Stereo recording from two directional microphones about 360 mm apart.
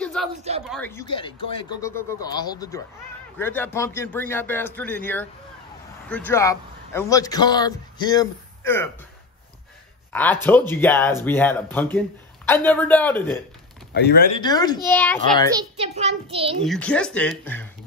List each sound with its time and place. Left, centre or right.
0.0 s a sound: centre
0.7 s a man's voice: centre
10.1 s a man's voice: centre
13.9 s speech: left
14.4 s a man's voice: centre
15.5 s a child's voice: centre
16.6 s a man's voice: centre